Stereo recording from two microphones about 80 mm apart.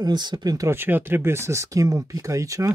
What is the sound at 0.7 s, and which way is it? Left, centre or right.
Speech, right.